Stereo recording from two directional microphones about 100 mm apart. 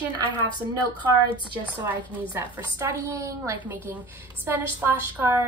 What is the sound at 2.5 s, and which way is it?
A woman's voice, 25° right (ahead or behind).